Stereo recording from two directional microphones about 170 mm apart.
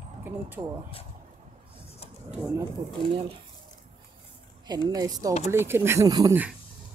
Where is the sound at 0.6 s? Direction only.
25° right (ahead or behind).